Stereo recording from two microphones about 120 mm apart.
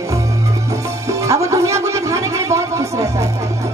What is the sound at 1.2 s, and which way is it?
Music, 25° right (ahead or behind).